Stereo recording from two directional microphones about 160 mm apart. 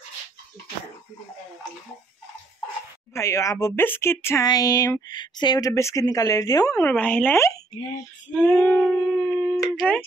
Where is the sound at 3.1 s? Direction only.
20° left (ahead or behind).